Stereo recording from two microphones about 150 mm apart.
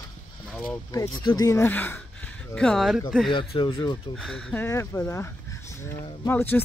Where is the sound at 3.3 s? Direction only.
35° left (ahead or behind).